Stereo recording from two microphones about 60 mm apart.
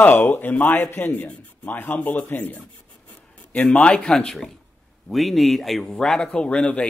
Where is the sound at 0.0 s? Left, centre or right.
Left.